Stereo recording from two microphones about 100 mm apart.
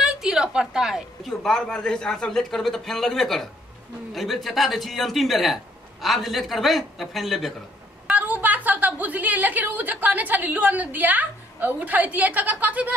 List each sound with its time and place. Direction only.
0.0 s a woman's voice: 5° right (ahead or behind)
8.1 s a woman's voice: 15° right (ahead or behind)